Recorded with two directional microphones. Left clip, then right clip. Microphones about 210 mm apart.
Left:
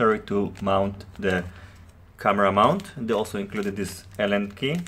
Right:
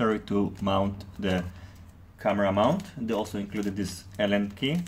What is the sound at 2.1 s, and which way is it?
Speech, 30° left (ahead or behind).